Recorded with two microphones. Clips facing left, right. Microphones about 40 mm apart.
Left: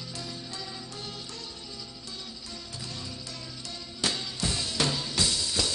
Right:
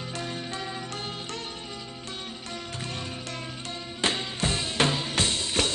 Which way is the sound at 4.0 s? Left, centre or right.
Right.